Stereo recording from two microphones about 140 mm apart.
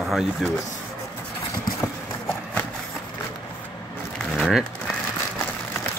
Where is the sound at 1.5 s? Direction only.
15° left (ahead or behind).